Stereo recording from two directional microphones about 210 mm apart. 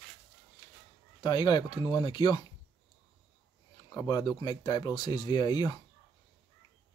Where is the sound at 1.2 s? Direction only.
20° left (ahead or behind).